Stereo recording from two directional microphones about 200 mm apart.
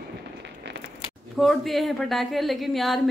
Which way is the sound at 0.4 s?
60° right (ahead or behind).